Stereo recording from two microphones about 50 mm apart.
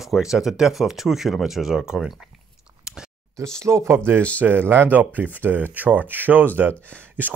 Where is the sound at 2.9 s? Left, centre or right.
Centre.